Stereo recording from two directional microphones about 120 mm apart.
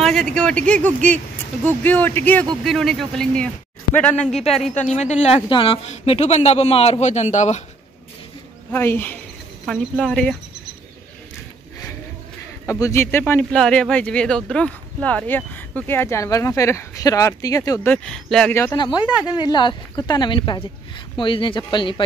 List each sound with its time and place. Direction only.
0.0 s speech: 5° left (ahead or behind)
2.6 s speech: centre (ahead or behind)
4.9 s speech: 70° left (ahead or behind)
5.5 s speech: 45° left (ahead or behind)
5.9 s a man's voice: 65° left (ahead or behind)
8.7 s speech: 20° left (ahead or behind)
9.7 s speech: 5° left (ahead or behind)
12.6 s speech: 25° left (ahead or behind)
13.2 s speech: 10° left (ahead or behind); by 17.7 s 30° left (ahead or behind)
17.8 s speech: 10° left (ahead or behind)
18.5 s speech: 20° left (ahead or behind)
19.2 s speech: 35° left (ahead or behind)